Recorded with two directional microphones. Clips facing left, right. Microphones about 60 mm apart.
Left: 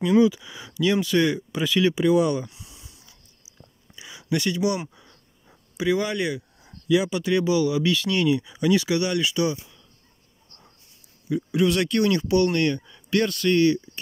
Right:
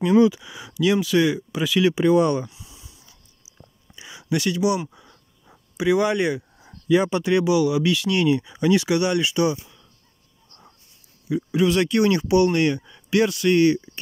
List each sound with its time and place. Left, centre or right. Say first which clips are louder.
0.3 s speech: right 2 dB; centre
2.0 s speech: right 3 dB; right
2.5 s a sound: right 1 dB; centre
3.9 s a sound: right 1 dB; centre
6.9 s speech: right 2 dB; right
7.2 s speech: right 2 dB; centre
8.4 s speech: right 2 dB; right
8.6 s speech: right 2 dB; centre
11.2 s speech: right 1 dB; centre
12.0 s speech: right 2 dB; right